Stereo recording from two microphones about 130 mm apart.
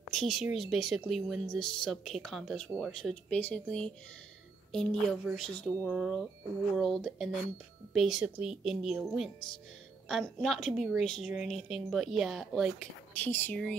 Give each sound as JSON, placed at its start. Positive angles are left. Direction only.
{"t": 0.1, "sound": "a woman's voice", "side_deg": 0}
{"t": 5.9, "sound": "a woman's voice", "side_deg": -5}
{"t": 13.1, "sound": "speech", "side_deg": 15}